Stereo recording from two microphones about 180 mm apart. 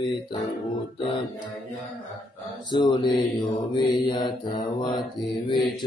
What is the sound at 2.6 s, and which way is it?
Mantra, 25° left (ahead or behind).